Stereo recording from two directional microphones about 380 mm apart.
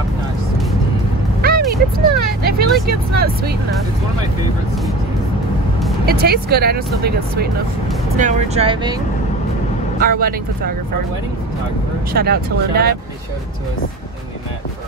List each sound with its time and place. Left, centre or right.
1.4 s a sound: right
2.0 s vehicle: right
6.0 s speech: right
9.9 s speech: right
12.1 s speech: right